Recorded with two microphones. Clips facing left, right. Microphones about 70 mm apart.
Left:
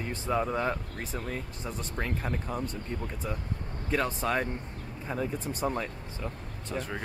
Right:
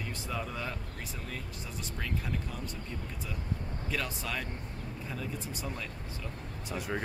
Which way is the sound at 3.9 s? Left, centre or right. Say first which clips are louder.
Left 8 dB; left.